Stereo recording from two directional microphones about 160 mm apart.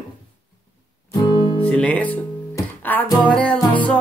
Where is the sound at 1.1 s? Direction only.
25° left (ahead or behind).